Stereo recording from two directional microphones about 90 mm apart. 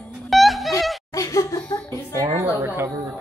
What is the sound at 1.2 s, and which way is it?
Laughter, 40° left (ahead or behind).